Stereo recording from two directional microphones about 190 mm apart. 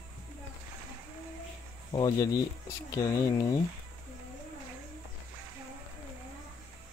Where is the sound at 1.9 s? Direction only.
20° left (ahead or behind).